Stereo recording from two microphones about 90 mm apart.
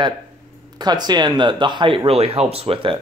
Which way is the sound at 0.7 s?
50° right (ahead or behind).